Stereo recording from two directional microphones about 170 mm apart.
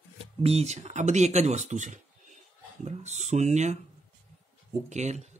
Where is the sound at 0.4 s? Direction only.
40° right (ahead or behind).